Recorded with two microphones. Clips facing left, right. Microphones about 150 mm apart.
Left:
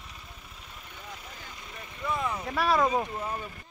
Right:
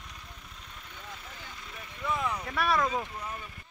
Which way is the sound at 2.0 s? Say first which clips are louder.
Left 1 dB; centre (ahead or behind).